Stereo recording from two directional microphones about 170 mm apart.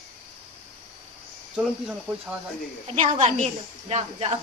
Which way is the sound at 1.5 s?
5° right (ahead or behind).